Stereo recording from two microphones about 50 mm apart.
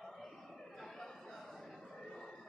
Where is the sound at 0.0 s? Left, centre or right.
Centre.